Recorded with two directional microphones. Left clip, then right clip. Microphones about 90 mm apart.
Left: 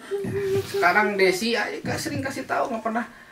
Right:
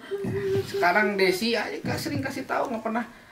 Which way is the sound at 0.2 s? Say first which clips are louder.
Left 1 dB; 10° right (ahead or behind).